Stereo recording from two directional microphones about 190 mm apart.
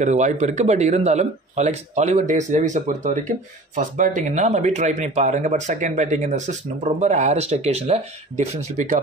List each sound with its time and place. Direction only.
0.0 s speech: 40° right (ahead or behind)